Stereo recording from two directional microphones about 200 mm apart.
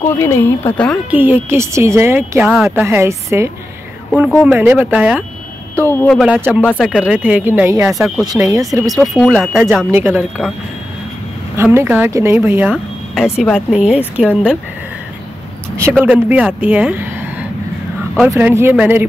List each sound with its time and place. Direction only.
0.0 s speech: 15° left (ahead or behind)
1.1 s speech: 10° right (ahead or behind)
4.5 s speech: 10° right (ahead or behind)
5.9 s speech: 10° left (ahead or behind)
6.1 s speech: 5° right (ahead or behind)
8.8 s speech: centre (ahead or behind)
11.5 s speech: 15° right (ahead or behind)
15.9 s speech: 5° right (ahead or behind)
18.3 s speech: 10° right (ahead or behind)